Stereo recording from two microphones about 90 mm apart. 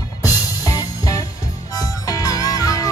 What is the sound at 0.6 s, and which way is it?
Music, 40° left (ahead or behind).